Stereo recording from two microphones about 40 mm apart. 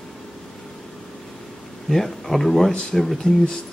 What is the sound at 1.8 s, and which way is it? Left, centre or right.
Speech, centre.